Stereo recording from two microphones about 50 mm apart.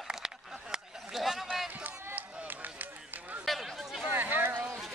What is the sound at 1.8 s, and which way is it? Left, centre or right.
Run, right.